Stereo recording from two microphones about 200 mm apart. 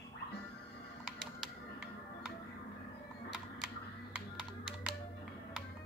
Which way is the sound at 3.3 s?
5° right (ahead or behind).